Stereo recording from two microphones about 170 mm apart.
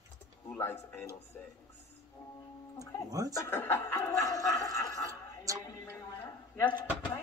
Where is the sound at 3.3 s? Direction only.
15° left (ahead or behind).